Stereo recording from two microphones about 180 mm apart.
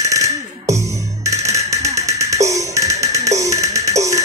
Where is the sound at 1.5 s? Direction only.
35° right (ahead or behind).